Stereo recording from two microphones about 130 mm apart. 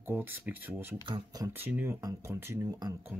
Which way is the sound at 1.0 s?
30° right (ahead or behind).